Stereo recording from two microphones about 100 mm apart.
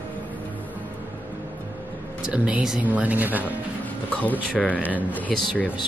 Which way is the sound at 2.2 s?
10° right (ahead or behind).